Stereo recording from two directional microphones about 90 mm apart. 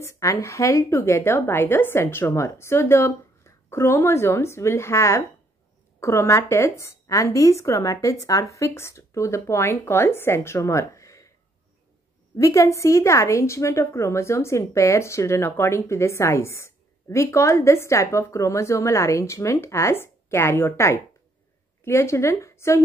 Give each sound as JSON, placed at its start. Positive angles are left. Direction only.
{"t": 0.0, "sound": "a woman's voice", "side_deg": 35}
{"t": 12.4, "sound": "a woman's voice", "side_deg": 35}